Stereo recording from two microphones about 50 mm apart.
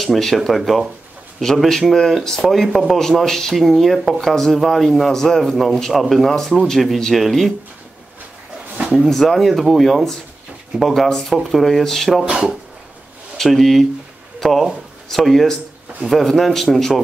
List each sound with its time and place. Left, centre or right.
0.0 s speech: centre
9.1 s speech: centre
12.3 s speech: centre
13.4 s speech: centre